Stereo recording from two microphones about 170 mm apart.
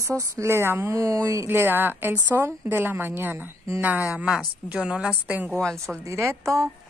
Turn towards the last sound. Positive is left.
turn(degrees=-15)  # may be behind; listen again after turning